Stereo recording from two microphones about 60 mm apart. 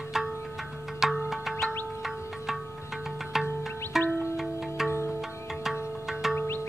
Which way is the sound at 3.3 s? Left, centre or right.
Centre.